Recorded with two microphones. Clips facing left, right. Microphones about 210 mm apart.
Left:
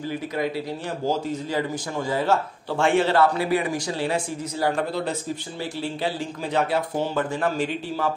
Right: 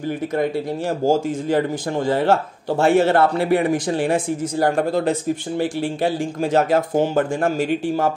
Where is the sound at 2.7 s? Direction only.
40° right (ahead or behind).